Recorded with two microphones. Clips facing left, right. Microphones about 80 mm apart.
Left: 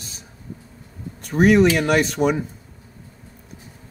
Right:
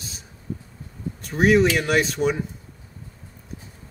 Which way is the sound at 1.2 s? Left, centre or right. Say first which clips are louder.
Left 3 dB; centre.